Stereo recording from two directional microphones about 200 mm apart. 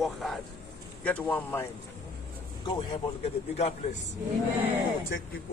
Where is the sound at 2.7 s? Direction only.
25° left (ahead or behind).